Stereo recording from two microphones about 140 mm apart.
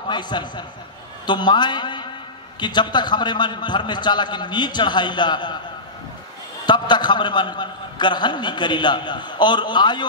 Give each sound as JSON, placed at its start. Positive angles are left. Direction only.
{"t": 0.1, "sound": "a man's voice", "side_deg": 30}
{"t": 6.6, "sound": "a man's voice", "side_deg": 30}